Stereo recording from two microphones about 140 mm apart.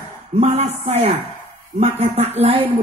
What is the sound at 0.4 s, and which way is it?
A woman's voice, 50° right (ahead or behind).